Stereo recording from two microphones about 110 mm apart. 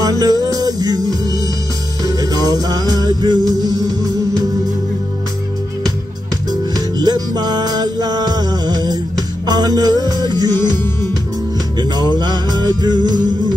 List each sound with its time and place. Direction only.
0.0 s music: 35° right (ahead or behind)
2.0 s music: 35° right (ahead or behind)
7.0 s music: 40° right (ahead or behind)
10.5 s music: 20° left (ahead or behind)
12.0 s music: 40° right (ahead or behind)